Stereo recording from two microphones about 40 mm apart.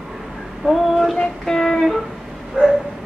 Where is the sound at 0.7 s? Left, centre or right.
Centre.